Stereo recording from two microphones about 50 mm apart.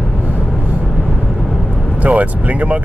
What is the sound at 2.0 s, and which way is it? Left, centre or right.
Speech, right.